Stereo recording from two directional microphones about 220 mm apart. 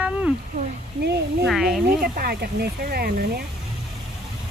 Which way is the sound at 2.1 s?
45° right (ahead or behind).